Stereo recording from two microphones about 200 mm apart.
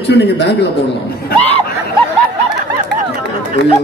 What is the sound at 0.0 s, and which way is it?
Speech, 60° left (ahead or behind).